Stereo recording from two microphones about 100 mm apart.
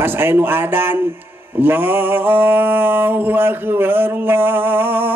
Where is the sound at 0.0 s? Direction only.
20° right (ahead or behind).